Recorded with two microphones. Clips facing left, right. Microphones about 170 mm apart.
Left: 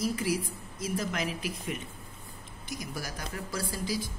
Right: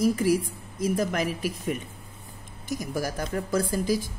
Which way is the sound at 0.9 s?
50° right (ahead or behind).